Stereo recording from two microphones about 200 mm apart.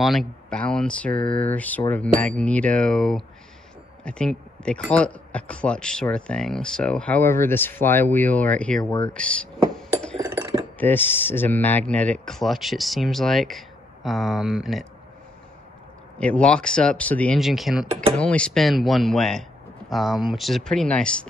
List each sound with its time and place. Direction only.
0.0 s speech: centre (ahead or behind)
10.2 s cutlery: 20° right (ahead or behind)
10.8 s speech: 10° left (ahead or behind)
16.2 s speech: 5° left (ahead or behind)